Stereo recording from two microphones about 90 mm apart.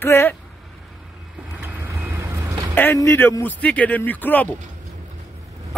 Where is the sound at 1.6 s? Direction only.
30° right (ahead or behind).